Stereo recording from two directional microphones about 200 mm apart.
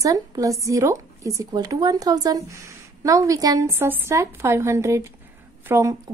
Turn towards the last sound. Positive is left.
turn(degrees=-15)  # may be behind; listen again after turning